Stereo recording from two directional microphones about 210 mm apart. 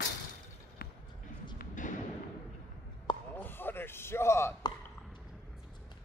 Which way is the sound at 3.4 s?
10° left (ahead or behind).